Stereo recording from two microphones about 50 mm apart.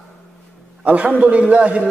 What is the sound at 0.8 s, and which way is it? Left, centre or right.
A man's voice, right.